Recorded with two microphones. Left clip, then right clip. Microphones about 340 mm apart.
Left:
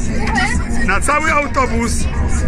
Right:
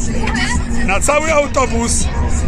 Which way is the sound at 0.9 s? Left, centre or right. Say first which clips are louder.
Right 1 dB; centre.